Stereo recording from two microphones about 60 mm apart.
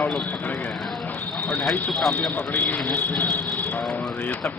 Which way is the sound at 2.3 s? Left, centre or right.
Left.